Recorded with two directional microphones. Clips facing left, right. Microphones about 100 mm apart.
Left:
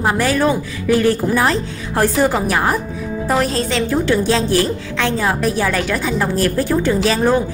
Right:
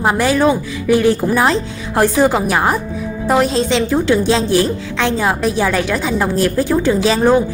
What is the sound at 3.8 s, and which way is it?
A woman's voice, 20° right (ahead or behind).